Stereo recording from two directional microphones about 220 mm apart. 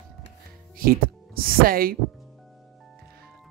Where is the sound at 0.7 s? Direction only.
40° right (ahead or behind).